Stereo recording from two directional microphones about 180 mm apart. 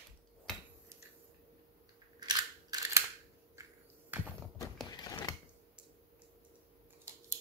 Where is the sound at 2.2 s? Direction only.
25° right (ahead or behind).